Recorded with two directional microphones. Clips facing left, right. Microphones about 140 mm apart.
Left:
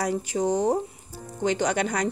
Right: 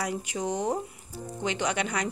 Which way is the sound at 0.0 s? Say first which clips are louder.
Left 6 dB; 35° left (ahead or behind).